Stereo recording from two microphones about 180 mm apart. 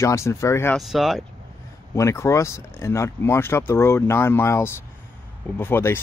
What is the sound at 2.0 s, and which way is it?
Speech, 15° left (ahead or behind).